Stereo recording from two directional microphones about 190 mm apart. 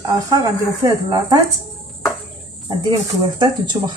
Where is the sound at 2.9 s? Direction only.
20° right (ahead or behind).